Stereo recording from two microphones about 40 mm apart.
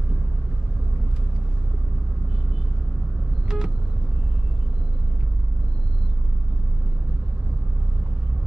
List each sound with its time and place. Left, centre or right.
3.4 s vehicle: centre